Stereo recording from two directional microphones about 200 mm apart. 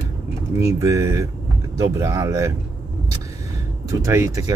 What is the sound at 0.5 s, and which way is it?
Speech, 15° right (ahead or behind).